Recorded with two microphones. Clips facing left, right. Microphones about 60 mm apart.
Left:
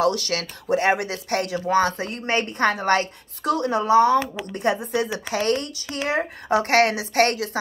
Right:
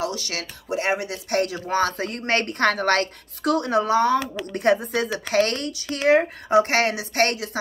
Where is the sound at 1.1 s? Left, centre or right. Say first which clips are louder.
Right 1 dB; left.